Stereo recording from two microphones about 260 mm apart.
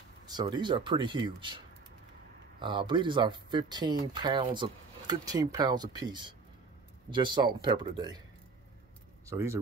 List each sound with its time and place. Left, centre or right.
0.3 s speech: centre
2.6 s speech: centre
9.2 s speech: centre